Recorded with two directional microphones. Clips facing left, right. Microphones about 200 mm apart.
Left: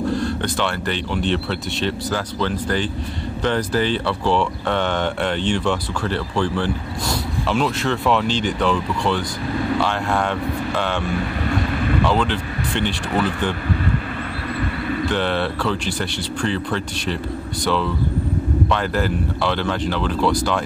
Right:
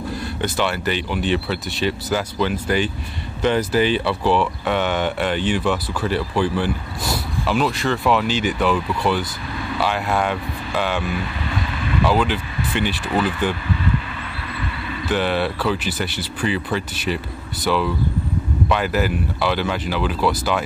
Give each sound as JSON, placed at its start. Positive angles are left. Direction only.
{"t": 0.1, "sound": "speech", "side_deg": -5}
{"t": 11.4, "sound": "vehicle", "side_deg": 50}
{"t": 12.0, "sound": "speech", "side_deg": -5}
{"t": 13.7, "sound": "vehicle", "side_deg": 45}
{"t": 15.0, "sound": "speech", "side_deg": -5}